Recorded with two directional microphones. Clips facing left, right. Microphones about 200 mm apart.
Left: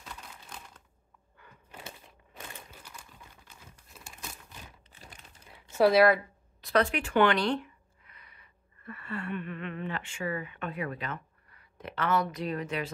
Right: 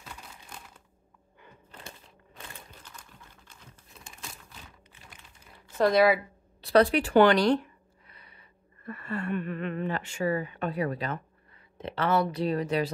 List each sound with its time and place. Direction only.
0.0 s computer keyboard: centre (ahead or behind)
1.7 s a sound: 5° left (ahead or behind)
2.3 s crumpling: 10° left (ahead or behind)
5.8 s a woman's voice: 5° left (ahead or behind)
6.6 s speech: 35° right (ahead or behind)